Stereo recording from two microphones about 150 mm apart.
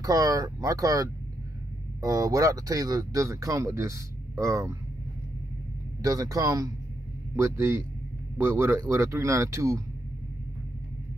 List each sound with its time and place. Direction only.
0.0 s speech: 25° right (ahead or behind)
6.0 s a man's voice: 25° right (ahead or behind)